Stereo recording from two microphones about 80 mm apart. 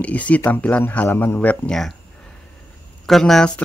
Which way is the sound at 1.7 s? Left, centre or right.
Centre.